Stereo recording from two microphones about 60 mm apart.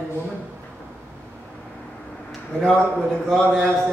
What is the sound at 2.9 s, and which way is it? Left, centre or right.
Speech, centre.